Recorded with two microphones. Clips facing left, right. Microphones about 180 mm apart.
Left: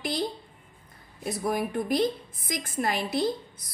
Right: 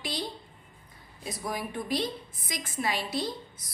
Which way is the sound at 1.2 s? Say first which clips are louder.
Left 6 dB; 55° left (ahead or behind).